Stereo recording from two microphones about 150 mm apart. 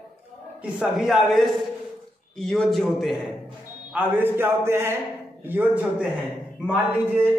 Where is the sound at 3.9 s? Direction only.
15° right (ahead or behind).